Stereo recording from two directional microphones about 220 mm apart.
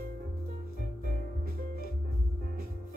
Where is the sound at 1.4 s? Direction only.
40° right (ahead or behind).